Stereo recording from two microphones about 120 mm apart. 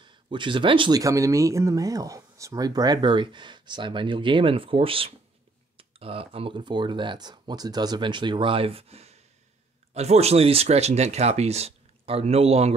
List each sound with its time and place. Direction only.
0.0 s speech: 40° right (ahead or behind)
1.0 s speech: 25° right (ahead or behind); by 12.7 s 60° right (ahead or behind)